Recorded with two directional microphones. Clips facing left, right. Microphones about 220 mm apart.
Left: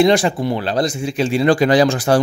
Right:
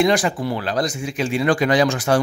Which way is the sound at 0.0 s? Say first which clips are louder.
Left 4 dB; 25° left (ahead or behind).